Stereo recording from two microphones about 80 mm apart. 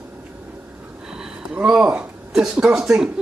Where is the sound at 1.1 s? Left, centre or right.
Centre.